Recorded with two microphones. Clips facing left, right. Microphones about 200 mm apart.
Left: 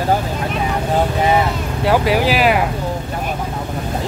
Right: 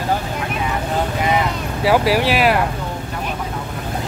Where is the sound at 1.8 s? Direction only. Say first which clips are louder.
Even; centre (ahead or behind).